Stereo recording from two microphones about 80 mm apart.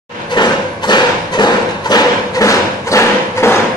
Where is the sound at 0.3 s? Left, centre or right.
Left.